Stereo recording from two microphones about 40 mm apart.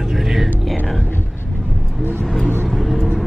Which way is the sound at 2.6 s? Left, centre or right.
Centre.